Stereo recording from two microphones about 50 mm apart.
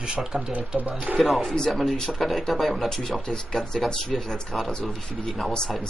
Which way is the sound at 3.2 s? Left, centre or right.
Centre.